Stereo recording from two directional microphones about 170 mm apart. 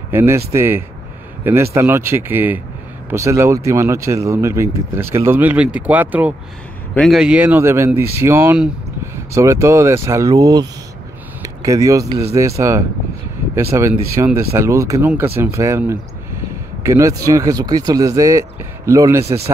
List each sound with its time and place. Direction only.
0.1 s speech: 15° right (ahead or behind)